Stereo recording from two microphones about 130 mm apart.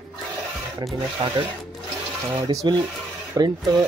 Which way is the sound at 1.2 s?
45° right (ahead or behind).